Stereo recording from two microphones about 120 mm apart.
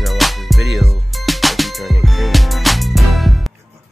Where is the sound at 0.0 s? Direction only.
Centre (ahead or behind).